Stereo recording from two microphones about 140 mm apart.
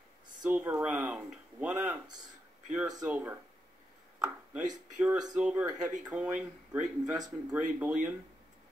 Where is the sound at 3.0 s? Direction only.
10° right (ahead or behind).